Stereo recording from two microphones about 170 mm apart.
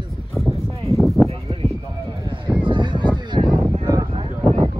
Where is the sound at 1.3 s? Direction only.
35° right (ahead or behind).